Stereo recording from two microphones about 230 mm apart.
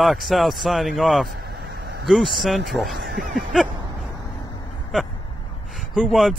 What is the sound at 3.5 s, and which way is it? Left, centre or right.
Speech, centre.